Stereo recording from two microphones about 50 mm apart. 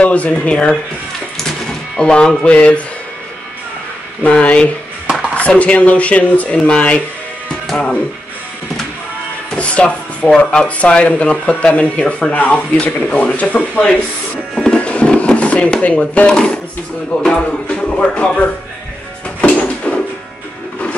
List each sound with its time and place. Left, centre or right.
0.0 s speech: left
2.0 s speech: centre
4.2 s speech: left
7.7 s speech: centre
9.6 s speech: left
14.5 s music: centre
14.8 s a sound: left
16.3 s speech: centre
19.4 s a sound: left